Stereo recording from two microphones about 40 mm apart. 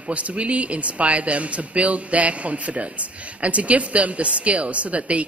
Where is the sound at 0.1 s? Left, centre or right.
Right.